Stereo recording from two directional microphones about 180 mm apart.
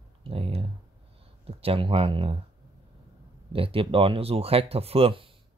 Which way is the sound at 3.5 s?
30° right (ahead or behind).